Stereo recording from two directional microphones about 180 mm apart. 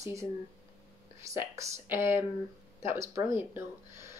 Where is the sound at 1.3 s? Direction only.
15° right (ahead or behind).